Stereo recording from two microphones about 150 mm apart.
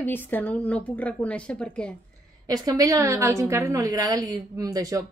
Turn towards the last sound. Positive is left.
turn(degrees=-25)  # may be behind; listen again after turning